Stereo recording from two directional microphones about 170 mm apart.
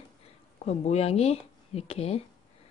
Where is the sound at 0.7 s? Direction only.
40° left (ahead or behind).